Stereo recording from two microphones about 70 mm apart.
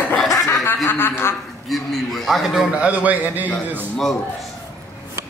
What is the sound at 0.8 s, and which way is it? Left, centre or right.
Speech, left.